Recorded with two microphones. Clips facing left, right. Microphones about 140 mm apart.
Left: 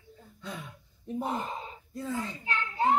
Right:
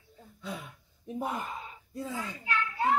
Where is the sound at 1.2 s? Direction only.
25° left (ahead or behind).